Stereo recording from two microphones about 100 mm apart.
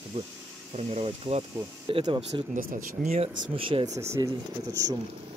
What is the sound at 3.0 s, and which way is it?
Speech, 90° right.